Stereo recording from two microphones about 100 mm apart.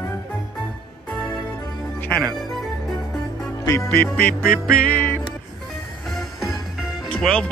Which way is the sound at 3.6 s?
25° left (ahead or behind).